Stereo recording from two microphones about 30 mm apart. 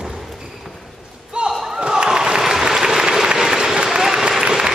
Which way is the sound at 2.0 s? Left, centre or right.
Right.